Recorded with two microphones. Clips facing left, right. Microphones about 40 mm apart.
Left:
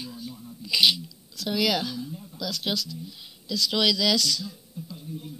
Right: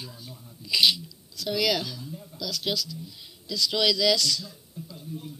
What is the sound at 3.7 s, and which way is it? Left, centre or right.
Speech, centre.